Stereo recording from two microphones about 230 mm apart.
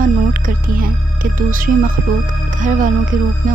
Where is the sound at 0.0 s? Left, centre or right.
Right.